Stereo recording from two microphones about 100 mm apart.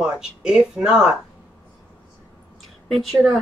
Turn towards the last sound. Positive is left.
turn(degrees=0)  # may be behind; listen again after turning